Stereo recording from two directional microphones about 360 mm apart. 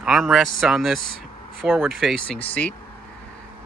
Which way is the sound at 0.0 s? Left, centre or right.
Centre.